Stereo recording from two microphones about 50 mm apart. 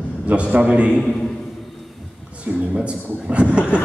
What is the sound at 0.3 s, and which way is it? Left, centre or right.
Speech, right.